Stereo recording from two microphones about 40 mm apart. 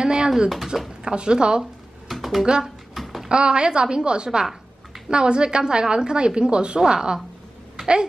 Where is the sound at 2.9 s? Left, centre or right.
Centre.